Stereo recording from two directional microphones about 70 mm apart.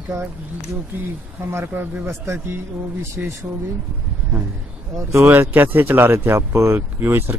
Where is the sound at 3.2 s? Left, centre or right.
Right.